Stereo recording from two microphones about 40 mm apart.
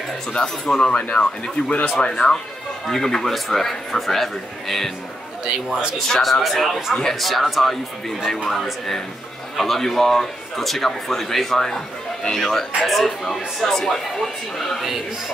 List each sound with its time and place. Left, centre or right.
0.7 s speech: centre
1.1 s speech: left; by 4.9 s centre
5.4 s a man's voice: centre
5.9 s speech: centre
8.5 s speech: centre